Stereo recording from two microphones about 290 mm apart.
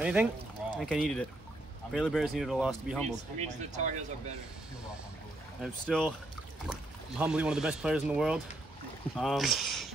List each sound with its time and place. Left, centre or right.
0.0 s speech: centre
3.1 s speech: right
5.6 s speech: centre